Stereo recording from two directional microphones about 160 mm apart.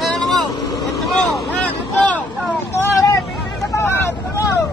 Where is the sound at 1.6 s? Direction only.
10° left (ahead or behind).